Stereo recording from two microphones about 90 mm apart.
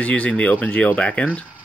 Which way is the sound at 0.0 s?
15° left (ahead or behind).